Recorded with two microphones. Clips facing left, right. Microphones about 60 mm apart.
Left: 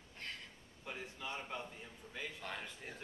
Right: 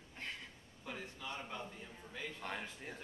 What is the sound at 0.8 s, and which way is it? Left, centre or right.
Speech, left.